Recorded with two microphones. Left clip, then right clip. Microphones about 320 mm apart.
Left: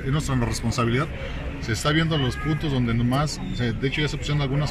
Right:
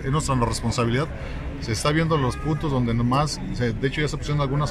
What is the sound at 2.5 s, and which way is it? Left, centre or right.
Speech, right.